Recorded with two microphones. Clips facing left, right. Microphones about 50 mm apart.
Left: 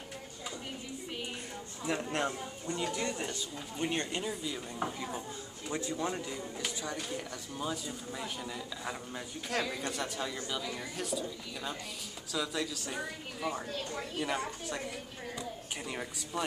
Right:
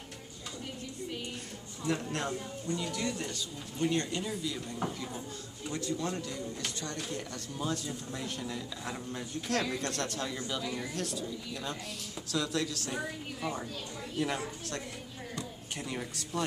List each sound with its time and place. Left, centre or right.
1.9 s a woman's voice: left